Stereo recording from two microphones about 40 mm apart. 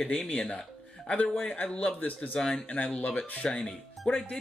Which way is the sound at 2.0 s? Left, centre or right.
Left.